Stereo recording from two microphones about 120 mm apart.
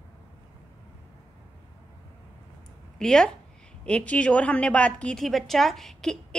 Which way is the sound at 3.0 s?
5° left (ahead or behind).